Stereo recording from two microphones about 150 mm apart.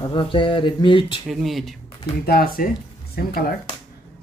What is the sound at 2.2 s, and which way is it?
Speech, 80° left.